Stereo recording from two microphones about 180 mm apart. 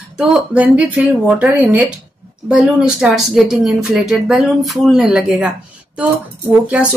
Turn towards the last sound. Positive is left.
turn(degrees=-5)  # may be behind; listen again after turning